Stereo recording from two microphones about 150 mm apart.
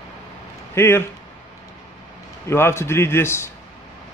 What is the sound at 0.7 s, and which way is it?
Speech, 15° left (ahead or behind).